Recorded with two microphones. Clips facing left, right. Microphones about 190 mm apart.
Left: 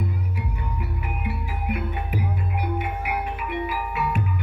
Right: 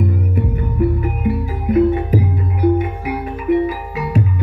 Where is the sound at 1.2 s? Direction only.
40° right (ahead or behind).